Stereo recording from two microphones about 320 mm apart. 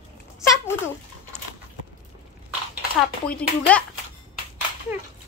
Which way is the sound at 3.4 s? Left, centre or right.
Centre.